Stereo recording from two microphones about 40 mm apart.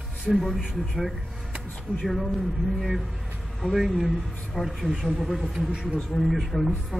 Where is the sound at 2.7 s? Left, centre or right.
Centre.